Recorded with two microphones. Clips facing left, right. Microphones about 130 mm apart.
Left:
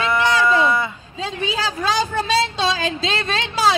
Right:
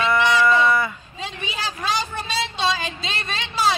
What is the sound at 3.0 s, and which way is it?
Speech, 90° left.